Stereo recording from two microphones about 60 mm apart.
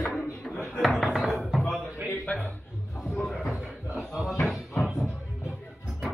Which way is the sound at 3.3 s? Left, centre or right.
Centre.